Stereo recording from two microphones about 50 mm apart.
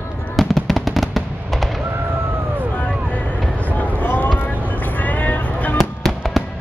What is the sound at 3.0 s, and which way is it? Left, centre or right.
Vehicle, left.